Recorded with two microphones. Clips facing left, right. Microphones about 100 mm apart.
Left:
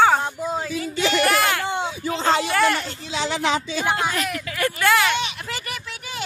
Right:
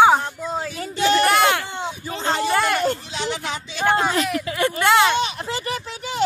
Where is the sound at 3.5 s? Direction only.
90° left.